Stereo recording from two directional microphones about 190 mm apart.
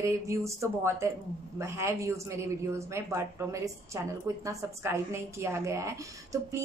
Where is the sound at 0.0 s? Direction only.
15° right (ahead or behind).